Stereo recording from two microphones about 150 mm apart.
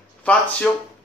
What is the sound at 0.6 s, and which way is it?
Speech, 5° left (ahead or behind).